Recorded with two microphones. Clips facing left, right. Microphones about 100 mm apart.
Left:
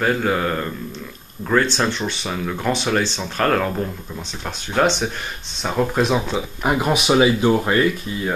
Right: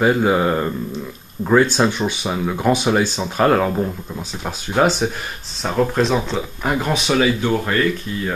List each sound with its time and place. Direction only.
0.0 s speech: 15° right (ahead or behind); by 8.3 s 15° left (ahead or behind)